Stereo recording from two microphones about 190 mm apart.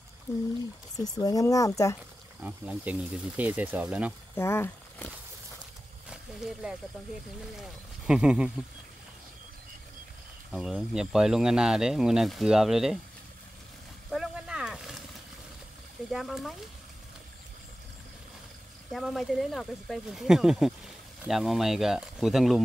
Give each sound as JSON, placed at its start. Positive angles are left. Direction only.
{"t": 0.9, "sound": "speech", "side_deg": 20}
{"t": 2.4, "sound": "speech", "side_deg": -10}
{"t": 4.4, "sound": "speech", "side_deg": 15}
{"t": 6.0, "sound": "a sound", "side_deg": -5}
{"t": 7.5, "sound": "speech", "side_deg": 0}
{"t": 10.5, "sound": "speech", "side_deg": 0}
{"t": 14.1, "sound": "a sound", "side_deg": -5}
{"t": 16.1, "sound": "speech", "side_deg": 0}
{"t": 18.9, "sound": "speech", "side_deg": 0}